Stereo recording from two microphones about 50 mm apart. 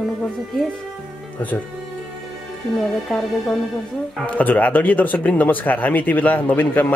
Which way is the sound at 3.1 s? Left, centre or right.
Centre.